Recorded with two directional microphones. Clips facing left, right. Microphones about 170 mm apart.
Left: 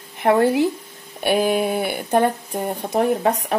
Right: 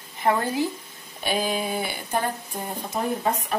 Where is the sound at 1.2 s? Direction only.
60° left (ahead or behind).